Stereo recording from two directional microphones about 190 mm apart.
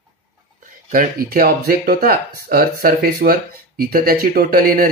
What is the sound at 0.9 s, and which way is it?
Speech, 45° right (ahead or behind).